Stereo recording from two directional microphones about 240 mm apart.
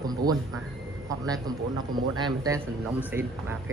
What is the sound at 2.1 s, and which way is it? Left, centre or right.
Speech, centre.